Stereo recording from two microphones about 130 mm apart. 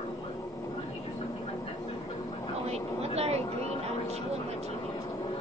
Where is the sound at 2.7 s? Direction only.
55° right (ahead or behind).